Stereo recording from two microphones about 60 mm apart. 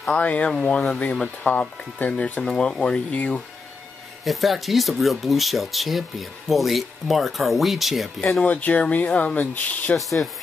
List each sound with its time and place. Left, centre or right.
0.0 s speech: left
2.4 s speech: centre
4.2 s speech: centre
8.4 s speech: left
9.9 s speech: centre